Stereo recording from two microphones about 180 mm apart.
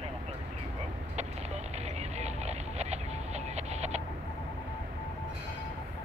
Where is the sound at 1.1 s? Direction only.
40° right (ahead or behind).